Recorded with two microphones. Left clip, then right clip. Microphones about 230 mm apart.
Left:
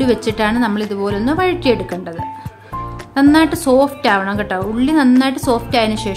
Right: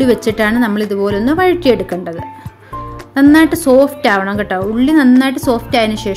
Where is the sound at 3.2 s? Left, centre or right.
Centre.